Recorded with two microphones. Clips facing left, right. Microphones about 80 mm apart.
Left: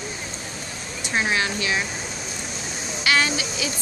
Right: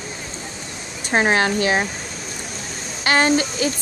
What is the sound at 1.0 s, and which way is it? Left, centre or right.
Speech, right.